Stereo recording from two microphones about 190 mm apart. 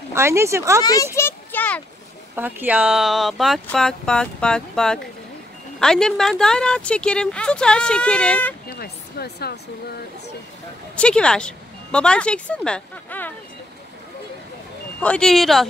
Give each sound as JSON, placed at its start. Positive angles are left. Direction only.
{"t": 0.1, "sound": "speech", "side_deg": -15}
{"t": 1.1, "sound": "a sound", "side_deg": 10}
{"t": 2.3, "sound": "speech", "side_deg": -10}
{"t": 8.6, "sound": "speech", "side_deg": 55}
{"t": 11.0, "sound": "speech", "side_deg": 5}
{"t": 15.0, "sound": "speech", "side_deg": 5}